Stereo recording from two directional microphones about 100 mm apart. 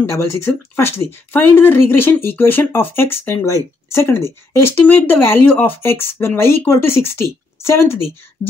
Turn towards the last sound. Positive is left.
turn(degrees=25)  # may be behind; listen again after turning